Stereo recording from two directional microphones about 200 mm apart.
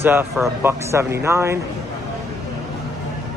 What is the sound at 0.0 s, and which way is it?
Speech, 10° right (ahead or behind).